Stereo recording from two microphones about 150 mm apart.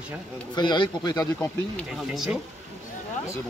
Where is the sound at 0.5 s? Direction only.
30° left (ahead or behind).